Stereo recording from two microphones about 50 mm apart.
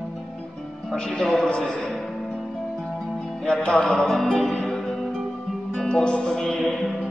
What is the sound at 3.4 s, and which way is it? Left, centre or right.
Music, centre.